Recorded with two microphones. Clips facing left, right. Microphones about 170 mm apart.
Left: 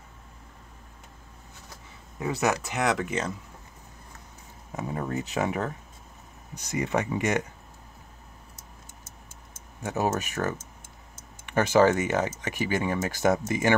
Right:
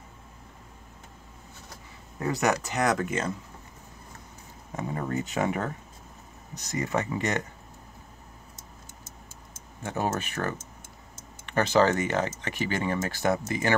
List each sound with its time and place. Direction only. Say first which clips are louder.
2.1 s speech: even; 5° left (ahead or behind)
4.7 s speech: even; 5° left (ahead or behind)
6.5 s speech: left 1 dB; 15° left (ahead or behind)
9.8 s speech: left 2 dB; 10° left (ahead or behind)